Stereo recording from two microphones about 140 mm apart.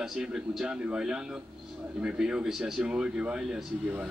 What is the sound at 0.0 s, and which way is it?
A man's voice, 5° right (ahead or behind).